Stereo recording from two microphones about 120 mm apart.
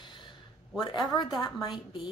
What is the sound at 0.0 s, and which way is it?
A woman's voice, 40° left (ahead or behind).